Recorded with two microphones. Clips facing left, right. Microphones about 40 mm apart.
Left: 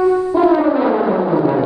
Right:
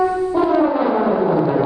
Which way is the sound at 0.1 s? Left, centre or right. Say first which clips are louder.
Left 4 dB; centre.